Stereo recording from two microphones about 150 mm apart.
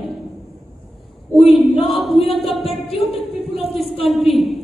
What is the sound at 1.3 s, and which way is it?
A woman's voice, centre (ahead or behind).